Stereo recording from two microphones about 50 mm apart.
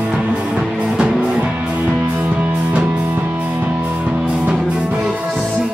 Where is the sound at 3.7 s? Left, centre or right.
Right.